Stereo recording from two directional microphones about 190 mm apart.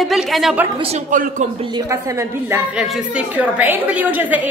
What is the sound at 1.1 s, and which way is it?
Speech, 45° right (ahead or behind).